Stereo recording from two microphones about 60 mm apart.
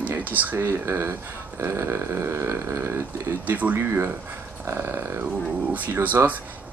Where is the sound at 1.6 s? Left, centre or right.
Right.